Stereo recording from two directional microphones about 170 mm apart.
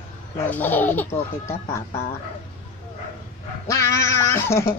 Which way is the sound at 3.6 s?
15° left (ahead or behind).